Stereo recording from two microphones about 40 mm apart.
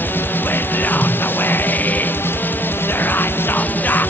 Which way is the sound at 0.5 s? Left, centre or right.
Left.